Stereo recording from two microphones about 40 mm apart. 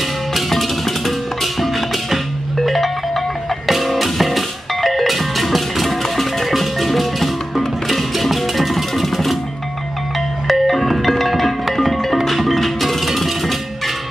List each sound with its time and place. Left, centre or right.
0.3 s music: centre
10.4 s music: centre